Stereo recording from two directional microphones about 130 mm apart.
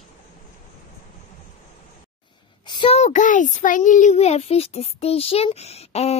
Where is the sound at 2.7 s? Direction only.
35° left (ahead or behind).